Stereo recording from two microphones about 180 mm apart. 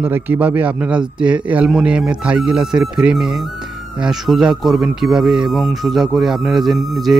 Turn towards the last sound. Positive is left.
turn(degrees=0)  # may be behind; listen again after turning